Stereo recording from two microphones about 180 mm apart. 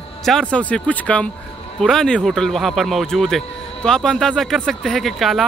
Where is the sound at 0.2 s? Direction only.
Centre (ahead or behind).